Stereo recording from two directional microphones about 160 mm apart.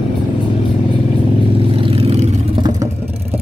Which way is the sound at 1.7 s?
35° right (ahead or behind).